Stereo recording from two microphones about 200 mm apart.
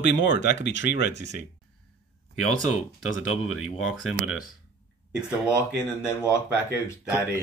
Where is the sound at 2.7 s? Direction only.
90° left.